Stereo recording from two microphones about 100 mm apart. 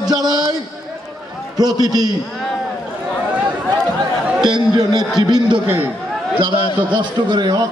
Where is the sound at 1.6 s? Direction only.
40° right (ahead or behind).